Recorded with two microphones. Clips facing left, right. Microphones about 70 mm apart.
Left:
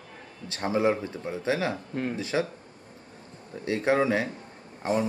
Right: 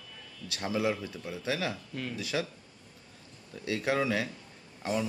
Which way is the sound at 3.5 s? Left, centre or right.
Left.